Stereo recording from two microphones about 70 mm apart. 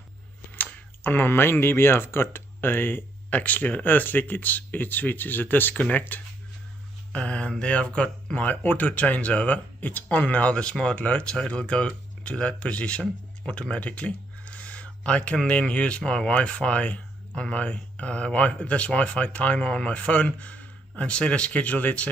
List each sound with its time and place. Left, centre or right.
0.6 s speech: left